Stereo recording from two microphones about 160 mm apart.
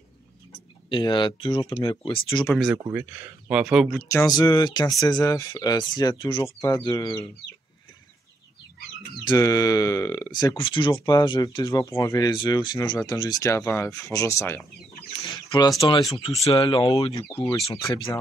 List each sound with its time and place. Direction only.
0.8 s speech: 30° left (ahead or behind)
2.4 s speech: centre (ahead or behind)
2.9 s speech: 10° right (ahead or behind)
4.1 s speech: 20° left (ahead or behind)
9.2 s speech: 25° left (ahead or behind)
15.2 s a sound: 30° left (ahead or behind)
15.9 s speech: 20° left (ahead or behind)
16.3 s speech: 35° left (ahead or behind)